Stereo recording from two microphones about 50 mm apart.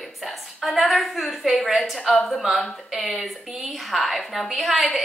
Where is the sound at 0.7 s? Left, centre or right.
Centre.